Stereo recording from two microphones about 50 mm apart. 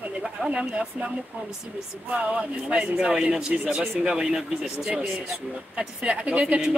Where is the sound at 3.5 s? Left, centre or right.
Centre.